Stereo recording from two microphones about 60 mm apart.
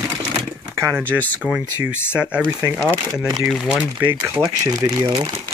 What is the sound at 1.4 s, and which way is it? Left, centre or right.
Speech, centre.